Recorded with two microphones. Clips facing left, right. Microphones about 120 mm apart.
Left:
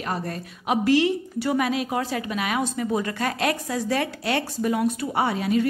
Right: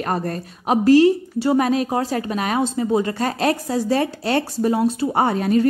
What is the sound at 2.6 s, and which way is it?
Speech, 25° right (ahead or behind).